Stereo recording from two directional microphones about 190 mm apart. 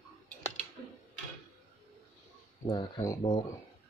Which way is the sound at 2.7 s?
20° left (ahead or behind).